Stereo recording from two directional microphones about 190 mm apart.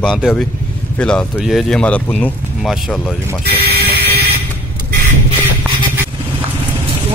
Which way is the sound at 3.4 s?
55° right (ahead or behind).